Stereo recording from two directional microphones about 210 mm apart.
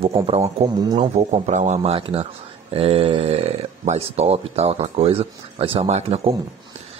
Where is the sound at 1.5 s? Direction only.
35° right (ahead or behind).